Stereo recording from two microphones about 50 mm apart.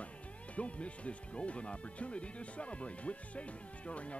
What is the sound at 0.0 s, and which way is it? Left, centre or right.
Speech, left.